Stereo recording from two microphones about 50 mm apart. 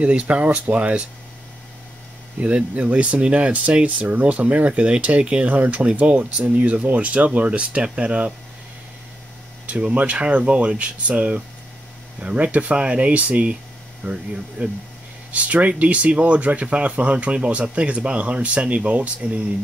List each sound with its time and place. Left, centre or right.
0.0 s speech: right
2.4 s speech: right
9.7 s speech: right